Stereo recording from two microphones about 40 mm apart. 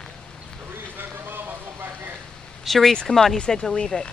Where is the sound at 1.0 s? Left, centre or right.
Right.